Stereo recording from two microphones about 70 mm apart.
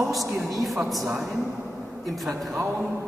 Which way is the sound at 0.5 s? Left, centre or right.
Centre.